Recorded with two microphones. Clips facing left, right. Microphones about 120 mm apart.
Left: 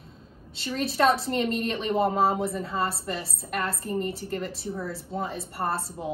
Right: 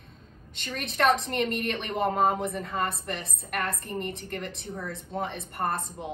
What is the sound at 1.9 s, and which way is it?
Speech, 30° left (ahead or behind).